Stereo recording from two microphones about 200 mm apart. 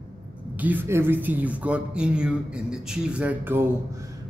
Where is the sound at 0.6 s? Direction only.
10° right (ahead or behind).